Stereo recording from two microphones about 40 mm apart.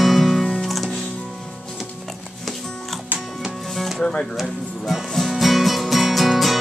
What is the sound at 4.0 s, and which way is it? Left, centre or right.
Music, left.